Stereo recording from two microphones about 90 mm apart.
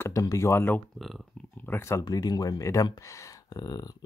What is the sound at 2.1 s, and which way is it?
Speech, 45° left (ahead or behind).